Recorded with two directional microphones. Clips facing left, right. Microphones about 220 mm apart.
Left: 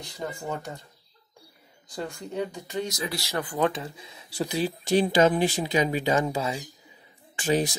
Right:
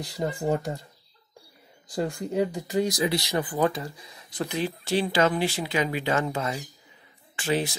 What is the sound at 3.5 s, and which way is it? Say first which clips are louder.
Speech: left 2 dB; centre (ahead or behind).